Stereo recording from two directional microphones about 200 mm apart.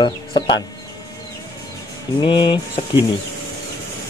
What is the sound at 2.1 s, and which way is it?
Speech, 25° left (ahead or behind).